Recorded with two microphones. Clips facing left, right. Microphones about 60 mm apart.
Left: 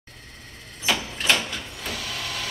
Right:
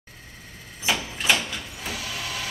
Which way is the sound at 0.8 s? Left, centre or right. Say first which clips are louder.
Even; centre.